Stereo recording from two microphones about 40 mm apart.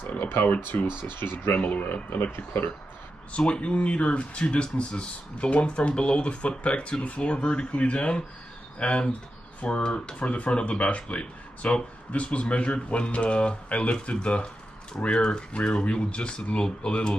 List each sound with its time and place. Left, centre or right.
1.0 s speech: left
1.6 s speech: left
2.3 s speech: left
3.3 s speech: left
9.8 s speech: centre
10.1 s speech: left